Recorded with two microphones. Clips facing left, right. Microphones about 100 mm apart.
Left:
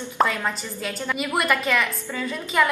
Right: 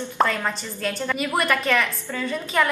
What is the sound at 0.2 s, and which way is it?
A woman's voice, centre (ahead or behind).